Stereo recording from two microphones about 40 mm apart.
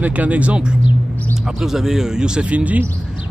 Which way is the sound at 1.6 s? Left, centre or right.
Centre.